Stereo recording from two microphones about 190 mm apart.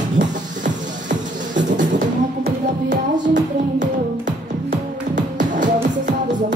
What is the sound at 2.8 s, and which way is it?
Music, 40° right (ahead or behind).